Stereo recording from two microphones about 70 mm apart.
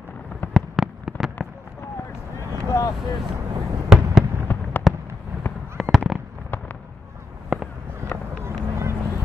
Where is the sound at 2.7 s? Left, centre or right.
Left.